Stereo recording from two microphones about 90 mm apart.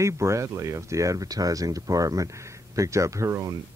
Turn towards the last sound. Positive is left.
turn(degrees=-35)  # may be behind; listen again after turning